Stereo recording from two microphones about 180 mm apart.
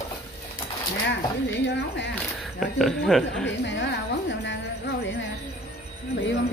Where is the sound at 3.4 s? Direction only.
80° left.